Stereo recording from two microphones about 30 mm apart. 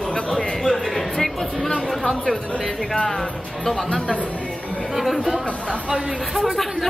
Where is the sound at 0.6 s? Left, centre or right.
Centre.